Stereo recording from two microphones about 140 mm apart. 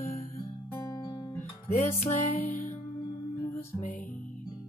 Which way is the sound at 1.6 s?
55° left (ahead or behind).